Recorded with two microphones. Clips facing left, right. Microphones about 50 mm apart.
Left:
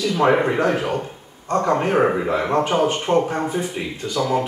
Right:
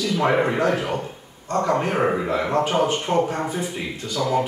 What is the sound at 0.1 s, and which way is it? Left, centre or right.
Speech, centre.